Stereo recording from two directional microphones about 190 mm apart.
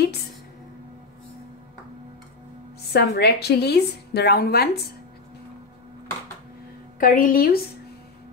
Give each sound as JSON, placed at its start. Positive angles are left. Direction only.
{"t": 2.9, "sound": "a woman's voice", "side_deg": 60}
{"t": 7.0, "sound": "a woman's voice", "side_deg": 45}